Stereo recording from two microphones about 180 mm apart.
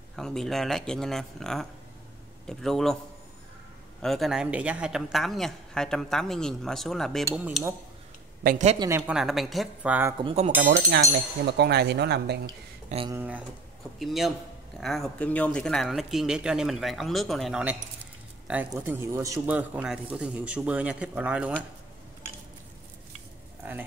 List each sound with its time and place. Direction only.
0.1 s a woman's voice: 5° left (ahead or behind)
4.0 s a woman's voice: centre (ahead or behind)
8.5 s speech: 40° right (ahead or behind)
8.7 s speech: 15° right (ahead or behind)
9.1 s a woman's voice: centre (ahead or behind)
10.2 s speech: 35° right (ahead or behind)
11.4 s speech: 65° right (ahead or behind)
12.4 s speech: 25° right (ahead or behind)
13.9 s a woman's voice: centre (ahead or behind)
18.8 s speech: 15° right (ahead or behind)